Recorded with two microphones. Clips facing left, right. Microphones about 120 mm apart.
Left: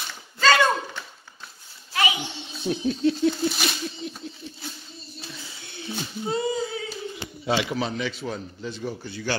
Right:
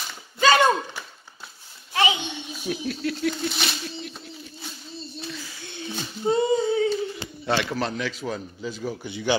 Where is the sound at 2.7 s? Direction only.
30° left (ahead or behind).